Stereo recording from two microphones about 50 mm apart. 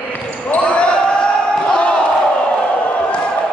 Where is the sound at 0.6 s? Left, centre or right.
Left.